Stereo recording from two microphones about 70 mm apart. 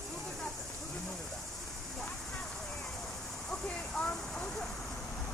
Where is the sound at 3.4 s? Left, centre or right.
Centre.